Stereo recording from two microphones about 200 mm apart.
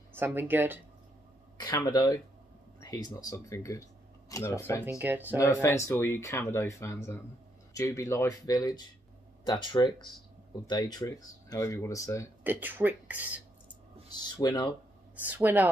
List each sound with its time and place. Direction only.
0.1 s speech: 10° right (ahead or behind)
1.6 s speech: 20° left (ahead or behind)
4.8 s speech: 10° right (ahead or behind)
5.4 s speech: 15° left (ahead or behind)
12.4 s speech: 10° right (ahead or behind)
14.1 s speech: 20° left (ahead or behind)
15.1 s speech: 10° right (ahead or behind)